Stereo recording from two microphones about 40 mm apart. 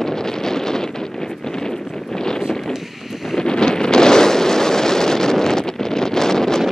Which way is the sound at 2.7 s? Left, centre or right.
Centre.